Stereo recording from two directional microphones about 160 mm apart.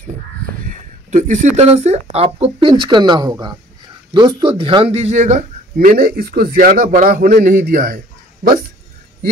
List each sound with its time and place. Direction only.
0.7 s speech: 50° right (ahead or behind)
5.9 s a man's voice: 65° right (ahead or behind)